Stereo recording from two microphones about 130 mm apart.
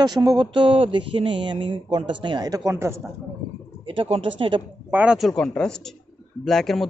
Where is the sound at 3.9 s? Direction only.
45° right (ahead or behind).